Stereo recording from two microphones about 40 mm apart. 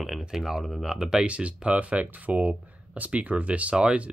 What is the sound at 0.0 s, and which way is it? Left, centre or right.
Speech, centre.